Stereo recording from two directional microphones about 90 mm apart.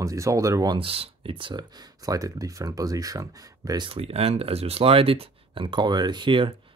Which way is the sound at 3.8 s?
90° right.